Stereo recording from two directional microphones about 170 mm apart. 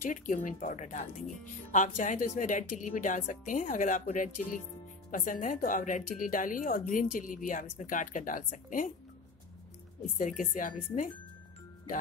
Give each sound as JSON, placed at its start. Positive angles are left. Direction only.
{"t": 0.0, "sound": "a woman's voice", "side_deg": 50}
{"t": 10.1, "sound": "a woman's voice", "side_deg": 50}